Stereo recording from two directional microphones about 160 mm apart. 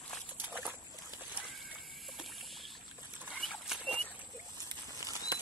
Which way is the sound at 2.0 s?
Centre (ahead or behind).